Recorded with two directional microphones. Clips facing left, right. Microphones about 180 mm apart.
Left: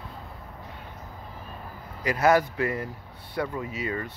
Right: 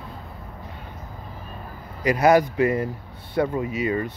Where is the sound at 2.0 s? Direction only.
15° right (ahead or behind).